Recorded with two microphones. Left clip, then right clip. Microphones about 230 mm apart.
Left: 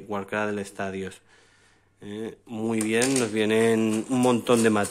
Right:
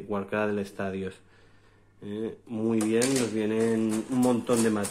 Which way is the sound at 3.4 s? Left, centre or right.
Left.